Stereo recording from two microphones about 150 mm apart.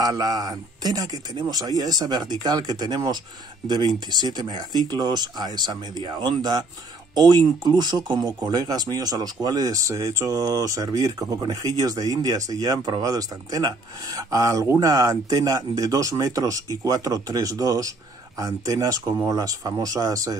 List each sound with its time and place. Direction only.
0.0 s speech: 25° right (ahead or behind)